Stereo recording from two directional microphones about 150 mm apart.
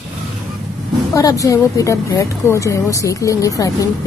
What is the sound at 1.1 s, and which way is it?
A woman's voice, 20° left (ahead or behind).